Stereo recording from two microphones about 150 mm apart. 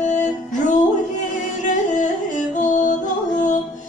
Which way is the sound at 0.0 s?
55° left (ahead or behind).